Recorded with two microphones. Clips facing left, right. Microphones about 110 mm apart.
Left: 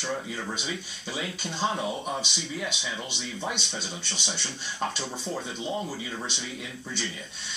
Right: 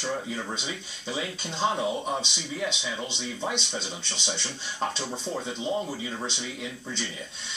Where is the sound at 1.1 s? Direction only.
25° right (ahead or behind).